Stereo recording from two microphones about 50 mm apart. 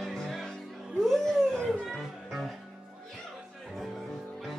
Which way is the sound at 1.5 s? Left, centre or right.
Centre.